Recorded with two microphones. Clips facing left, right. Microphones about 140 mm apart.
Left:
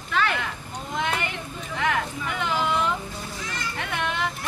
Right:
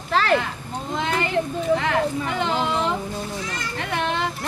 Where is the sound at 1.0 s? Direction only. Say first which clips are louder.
Right 6 dB; 30° right (ahead or behind).